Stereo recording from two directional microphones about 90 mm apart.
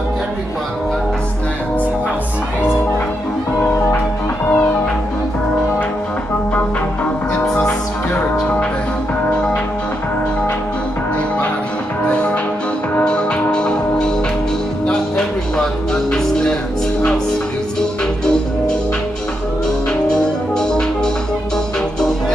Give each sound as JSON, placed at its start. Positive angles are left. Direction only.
{"t": 4.5, "sound": "music", "side_deg": 20}
{"t": 12.1, "sound": "music", "side_deg": 10}
{"t": 17.7, "sound": "music", "side_deg": 10}
{"t": 20.5, "sound": "music", "side_deg": 10}